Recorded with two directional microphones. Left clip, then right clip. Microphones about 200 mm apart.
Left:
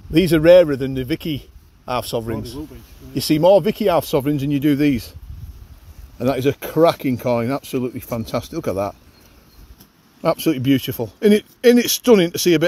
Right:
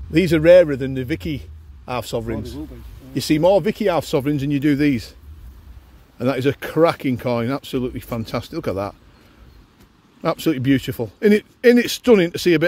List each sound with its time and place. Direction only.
0.1 s speech: 5° left (ahead or behind)
6.1 s speech: centre (ahead or behind)
10.2 s speech: centre (ahead or behind)
11.8 s speech: 35° right (ahead or behind)